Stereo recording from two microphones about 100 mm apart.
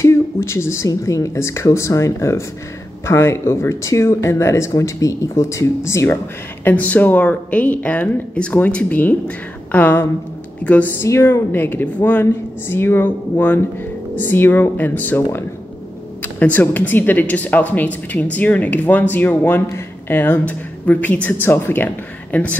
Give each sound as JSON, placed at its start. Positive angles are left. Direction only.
{"t": 0.0, "sound": "speech", "side_deg": 25}
{"t": 6.6, "sound": "a woman's voice", "side_deg": 15}
{"t": 11.1, "sound": "speech", "side_deg": 25}